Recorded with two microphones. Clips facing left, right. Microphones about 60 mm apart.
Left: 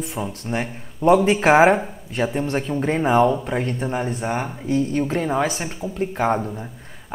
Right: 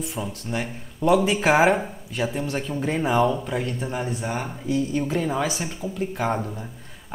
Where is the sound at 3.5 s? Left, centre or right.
Left.